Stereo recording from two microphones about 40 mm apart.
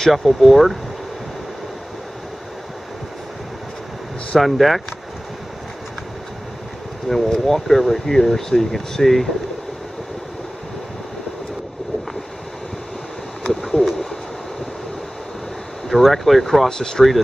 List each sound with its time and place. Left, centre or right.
0.1 s speech: centre
4.4 s speech: centre
7.1 s speech: centre
13.5 s bird: centre
15.9 s speech: centre
16.6 s speech: centre